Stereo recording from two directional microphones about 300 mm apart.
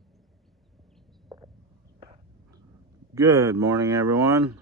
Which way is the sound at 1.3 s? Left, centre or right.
Centre.